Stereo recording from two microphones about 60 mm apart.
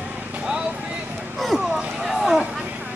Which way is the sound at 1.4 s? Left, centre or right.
Centre.